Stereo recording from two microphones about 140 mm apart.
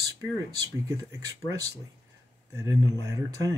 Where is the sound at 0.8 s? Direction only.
20° right (ahead or behind).